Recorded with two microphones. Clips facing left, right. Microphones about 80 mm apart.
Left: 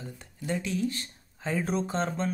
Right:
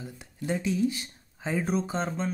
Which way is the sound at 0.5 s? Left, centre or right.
Centre.